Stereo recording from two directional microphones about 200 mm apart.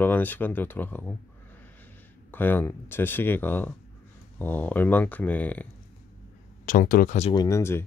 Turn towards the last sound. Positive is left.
turn(degrees=15)  # may be behind; listen again after turning